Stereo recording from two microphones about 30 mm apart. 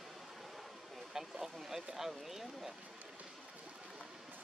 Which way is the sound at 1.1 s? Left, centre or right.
Centre.